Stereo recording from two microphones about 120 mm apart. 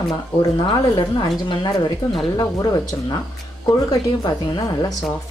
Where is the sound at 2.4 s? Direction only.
30° left (ahead or behind).